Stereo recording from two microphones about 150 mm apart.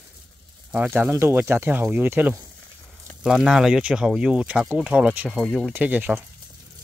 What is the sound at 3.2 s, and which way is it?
Speech, centre (ahead or behind).